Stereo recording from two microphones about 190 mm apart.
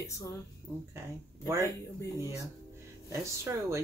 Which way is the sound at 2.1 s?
15° right (ahead or behind).